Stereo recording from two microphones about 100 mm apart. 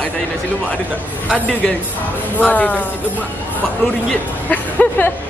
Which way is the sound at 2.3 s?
15° left (ahead or behind).